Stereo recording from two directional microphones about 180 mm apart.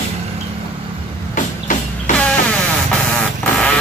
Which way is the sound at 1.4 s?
45° left (ahead or behind).